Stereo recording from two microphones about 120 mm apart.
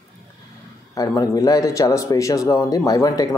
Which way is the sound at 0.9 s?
30° left (ahead or behind).